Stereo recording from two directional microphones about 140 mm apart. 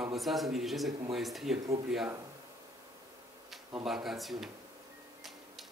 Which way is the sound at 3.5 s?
5° right (ahead or behind).